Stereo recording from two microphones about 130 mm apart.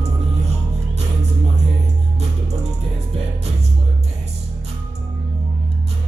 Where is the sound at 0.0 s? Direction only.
55° right (ahead or behind).